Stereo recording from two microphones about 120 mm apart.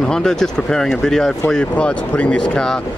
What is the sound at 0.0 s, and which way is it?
Speech, 5° left (ahead or behind).